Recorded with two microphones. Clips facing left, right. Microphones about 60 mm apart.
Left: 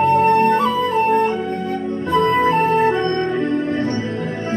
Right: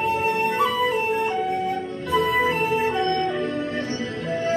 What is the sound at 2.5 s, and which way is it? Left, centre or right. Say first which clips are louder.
Music: left 7 dB; left.